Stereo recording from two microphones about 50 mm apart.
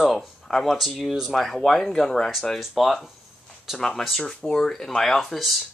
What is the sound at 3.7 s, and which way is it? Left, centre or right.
Speech, centre.